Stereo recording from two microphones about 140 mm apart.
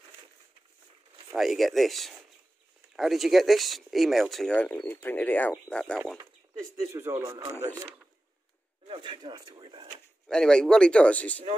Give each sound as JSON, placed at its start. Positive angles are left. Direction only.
{"t": 1.3, "sound": "speech", "side_deg": 0}
{"t": 6.9, "sound": "speech", "side_deg": -20}
{"t": 8.8, "sound": "speech", "side_deg": -40}
{"t": 10.2, "sound": "speech", "side_deg": 5}